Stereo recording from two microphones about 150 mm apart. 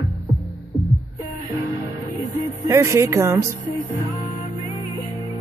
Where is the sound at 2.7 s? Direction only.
20° right (ahead or behind).